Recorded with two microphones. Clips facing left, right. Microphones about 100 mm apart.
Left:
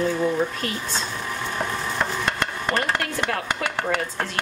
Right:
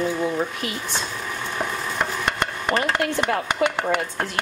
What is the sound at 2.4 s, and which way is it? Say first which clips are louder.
Stir: right 2 dB; 15° right (ahead or behind).